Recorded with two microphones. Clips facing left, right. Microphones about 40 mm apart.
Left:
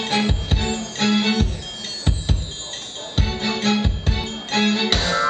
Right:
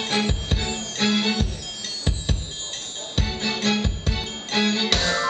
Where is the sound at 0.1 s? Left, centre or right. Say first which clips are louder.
Left 3 dB; centre.